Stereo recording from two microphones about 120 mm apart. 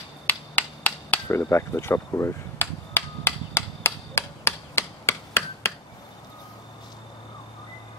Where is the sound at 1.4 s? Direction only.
25° left (ahead or behind).